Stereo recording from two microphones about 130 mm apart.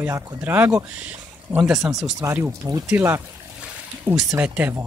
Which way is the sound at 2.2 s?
25° right (ahead or behind).